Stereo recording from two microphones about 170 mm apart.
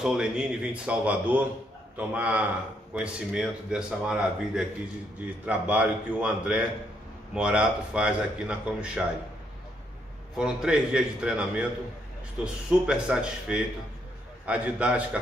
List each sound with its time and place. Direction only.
0.0 s a man's voice: 5° right (ahead or behind)
10.3 s a man's voice: 5° right (ahead or behind)